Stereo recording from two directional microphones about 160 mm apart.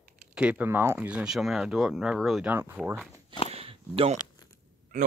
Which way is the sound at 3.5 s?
35° right (ahead or behind).